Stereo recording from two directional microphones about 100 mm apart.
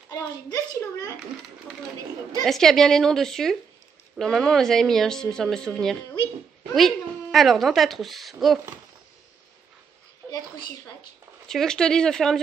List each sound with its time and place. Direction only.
0.1 s a child's voice: 35° left (ahead or behind)
2.4 s a woman's voice: 5° left (ahead or behind)
11.4 s a woman's voice: 5° left (ahead or behind)